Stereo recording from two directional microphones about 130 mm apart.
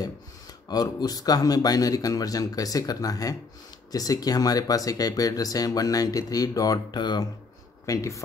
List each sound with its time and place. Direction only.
0.7 s speech: 30° left (ahead or behind)